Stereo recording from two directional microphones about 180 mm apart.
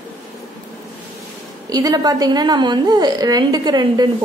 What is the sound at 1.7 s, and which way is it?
A woman's voice, 20° right (ahead or behind).